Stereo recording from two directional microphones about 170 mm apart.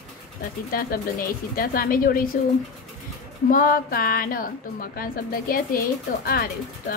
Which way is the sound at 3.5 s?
55° left (ahead or behind).